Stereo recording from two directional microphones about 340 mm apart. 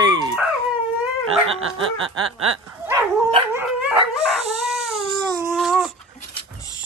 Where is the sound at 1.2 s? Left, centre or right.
Right.